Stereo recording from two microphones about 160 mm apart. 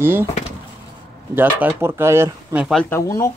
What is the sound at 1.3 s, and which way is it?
Speech, 15° right (ahead or behind).